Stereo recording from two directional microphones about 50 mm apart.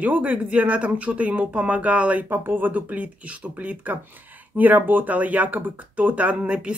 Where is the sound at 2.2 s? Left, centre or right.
Right.